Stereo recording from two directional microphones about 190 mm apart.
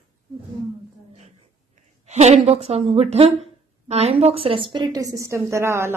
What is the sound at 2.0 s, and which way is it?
A woman's voice, 35° right (ahead or behind).